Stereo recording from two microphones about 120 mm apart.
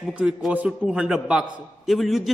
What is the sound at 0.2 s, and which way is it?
A man's voice, 10° right (ahead or behind).